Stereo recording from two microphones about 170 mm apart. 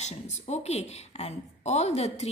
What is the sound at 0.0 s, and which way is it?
A woman's voice, 40° left (ahead or behind).